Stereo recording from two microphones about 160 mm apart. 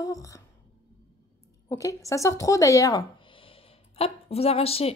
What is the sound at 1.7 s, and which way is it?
Speech, 20° left (ahead or behind).